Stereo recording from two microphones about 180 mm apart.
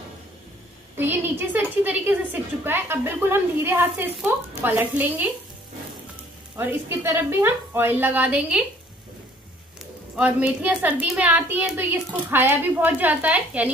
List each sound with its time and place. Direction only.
0.9 s a woman's voice: 10° right (ahead or behind)
6.5 s a woman's voice: 10° right (ahead or behind)
10.1 s a woman's voice: 10° right (ahead or behind)